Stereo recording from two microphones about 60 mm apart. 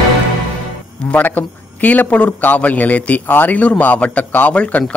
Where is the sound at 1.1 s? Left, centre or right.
Left.